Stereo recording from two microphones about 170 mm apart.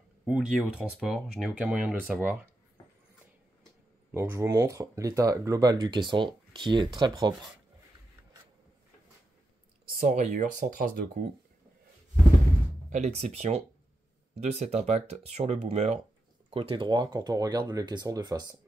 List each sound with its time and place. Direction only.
0.2 s speech: centre (ahead or behind)
4.1 s speech: 15° right (ahead or behind)
9.9 s speech: 45° right (ahead or behind)
12.9 s speech: 40° right (ahead or behind)
16.5 s speech: 30° right (ahead or behind)